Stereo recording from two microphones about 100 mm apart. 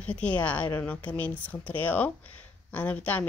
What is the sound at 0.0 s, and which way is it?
Speech, 15° left (ahead or behind).